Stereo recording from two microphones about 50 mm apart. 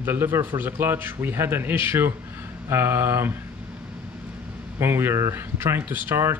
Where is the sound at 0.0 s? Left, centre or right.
Right.